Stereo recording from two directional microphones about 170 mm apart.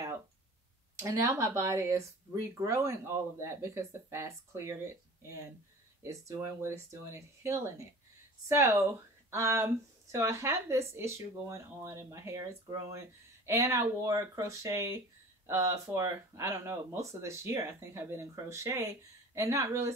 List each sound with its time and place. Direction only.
0.9 s speech: 20° right (ahead or behind)
6.0 s speech: 20° right (ahead or behind)